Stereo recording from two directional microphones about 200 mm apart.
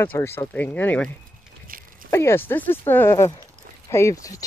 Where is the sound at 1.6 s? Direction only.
45° right (ahead or behind).